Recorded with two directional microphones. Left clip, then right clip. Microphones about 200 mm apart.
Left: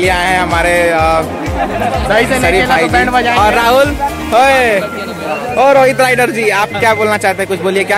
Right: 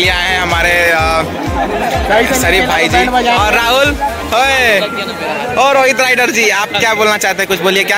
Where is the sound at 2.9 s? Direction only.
15° right (ahead or behind).